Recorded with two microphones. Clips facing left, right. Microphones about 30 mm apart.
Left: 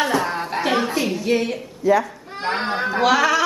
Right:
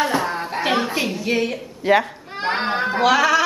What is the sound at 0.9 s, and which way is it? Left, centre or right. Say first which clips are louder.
Speech: left 1 dB; centre.